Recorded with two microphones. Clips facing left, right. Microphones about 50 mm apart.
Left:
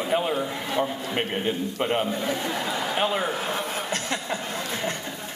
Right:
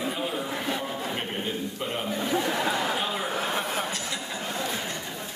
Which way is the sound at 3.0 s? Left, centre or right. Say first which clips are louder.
Left 5 dB; left.